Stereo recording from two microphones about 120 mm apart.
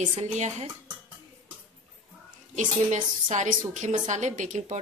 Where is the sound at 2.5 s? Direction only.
90° right.